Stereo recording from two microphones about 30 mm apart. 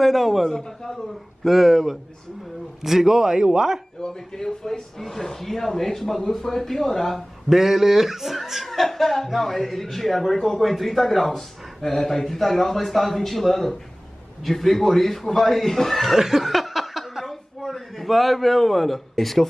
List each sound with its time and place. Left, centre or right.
0.0 s speech: centre; by 3.8 s right
4.4 s a man's voice: centre
7.4 s speech: centre
8.6 s a man's voice: centre
16.2 s a sound: centre